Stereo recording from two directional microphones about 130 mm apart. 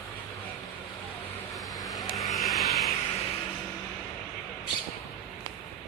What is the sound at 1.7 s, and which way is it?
Vehicle, 30° left (ahead or behind).